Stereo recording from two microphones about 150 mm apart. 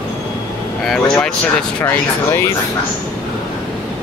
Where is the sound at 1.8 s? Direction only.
15° left (ahead or behind).